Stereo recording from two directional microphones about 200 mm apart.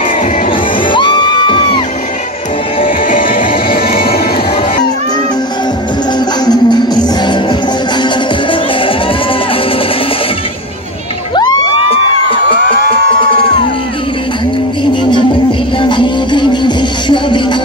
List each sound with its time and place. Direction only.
0.5 s music: 25° left (ahead or behind)
3.1 s music: 45° left (ahead or behind)
6.1 s music: 20° left (ahead or behind)
15.8 s music: 25° left (ahead or behind)